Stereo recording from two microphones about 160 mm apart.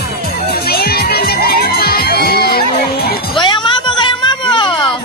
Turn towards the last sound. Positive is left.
turn(degrees=30)  # may be behind; listen again after turning